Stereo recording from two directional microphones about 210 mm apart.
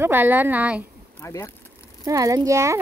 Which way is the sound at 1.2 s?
15° left (ahead or behind).